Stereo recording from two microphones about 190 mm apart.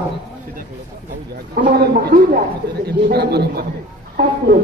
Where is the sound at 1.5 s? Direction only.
50° right (ahead or behind).